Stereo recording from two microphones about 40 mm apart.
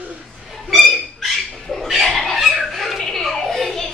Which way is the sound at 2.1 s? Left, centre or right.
Centre.